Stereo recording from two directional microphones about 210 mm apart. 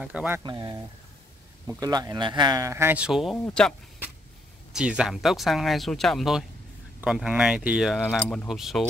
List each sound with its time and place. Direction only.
0.0 s speech: 5° right (ahead or behind)
0.4 s speech: 20° right (ahead or behind); by 3.7 s 5° left (ahead or behind)
4.7 s speech: 5° right (ahead or behind)